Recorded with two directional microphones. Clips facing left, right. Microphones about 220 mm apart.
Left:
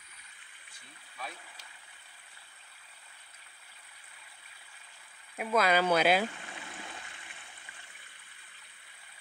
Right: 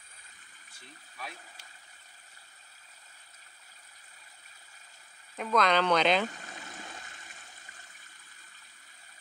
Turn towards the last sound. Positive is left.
turn(degrees=-40)  # may be behind; listen again after turning